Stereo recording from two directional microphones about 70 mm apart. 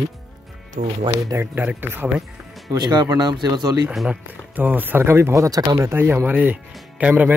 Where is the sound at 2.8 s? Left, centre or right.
Right.